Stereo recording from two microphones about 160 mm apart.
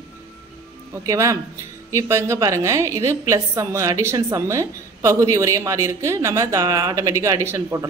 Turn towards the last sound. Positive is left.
turn(degrees=-15)  # may be behind; listen again after turning